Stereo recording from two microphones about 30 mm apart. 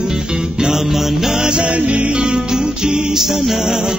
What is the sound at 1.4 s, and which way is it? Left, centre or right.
Music, right.